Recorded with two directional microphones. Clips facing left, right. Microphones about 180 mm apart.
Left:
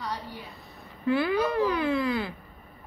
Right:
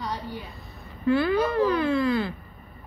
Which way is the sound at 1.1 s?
15° left (ahead or behind).